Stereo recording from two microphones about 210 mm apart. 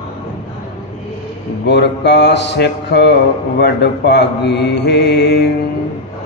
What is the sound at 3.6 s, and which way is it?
Mantra, 55° left (ahead or behind).